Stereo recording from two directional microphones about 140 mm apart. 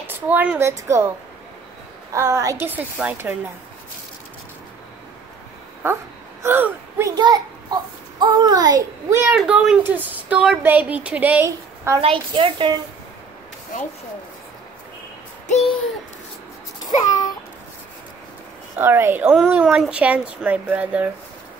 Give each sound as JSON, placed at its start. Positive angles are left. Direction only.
{"t": 0.0, "sound": "speech", "side_deg": -15}
{"t": 2.1, "sound": "a child's voice", "side_deg": -20}
{"t": 5.8, "sound": "speech", "side_deg": -15}
{"t": 7.2, "sound": "a child's voice", "side_deg": -30}
{"t": 9.3, "sound": "speech", "side_deg": -5}
{"t": 12.0, "sound": "a woman's voice", "side_deg": -40}
{"t": 15.4, "sound": "a sound", "side_deg": 50}
{"t": 16.8, "sound": "babbling", "side_deg": 25}
{"t": 18.8, "sound": "speech", "side_deg": -15}